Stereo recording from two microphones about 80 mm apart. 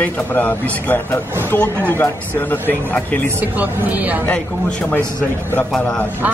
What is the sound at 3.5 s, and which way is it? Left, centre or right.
Music, centre.